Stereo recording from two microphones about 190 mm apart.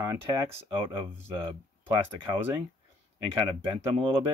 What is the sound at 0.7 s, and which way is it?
Speech, 25° right (ahead or behind).